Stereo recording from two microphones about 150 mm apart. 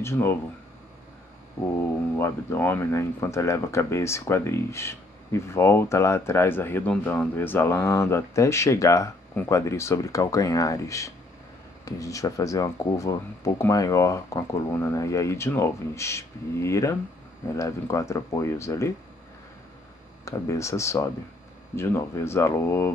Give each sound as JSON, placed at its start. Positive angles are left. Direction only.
{"t": 0.0, "sound": "speech", "side_deg": 15}
{"t": 1.7, "sound": "speech", "side_deg": 15}
{"t": 20.2, "sound": "speech", "side_deg": 20}